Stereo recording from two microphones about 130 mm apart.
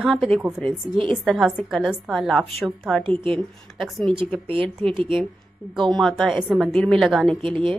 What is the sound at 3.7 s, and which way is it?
Speech, centre (ahead or behind).